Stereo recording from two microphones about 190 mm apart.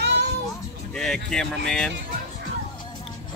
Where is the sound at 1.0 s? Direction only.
5° left (ahead or behind).